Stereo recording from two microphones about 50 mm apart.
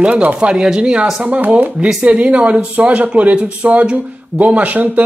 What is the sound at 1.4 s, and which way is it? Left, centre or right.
Speech, right.